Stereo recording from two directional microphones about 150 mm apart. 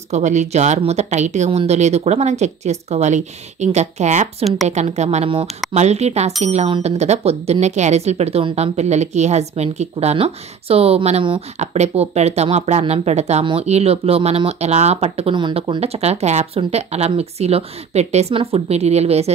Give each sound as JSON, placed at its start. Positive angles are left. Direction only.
{"t": 0.1, "sound": "speech", "side_deg": -50}
{"t": 8.7, "sound": "speech", "side_deg": -50}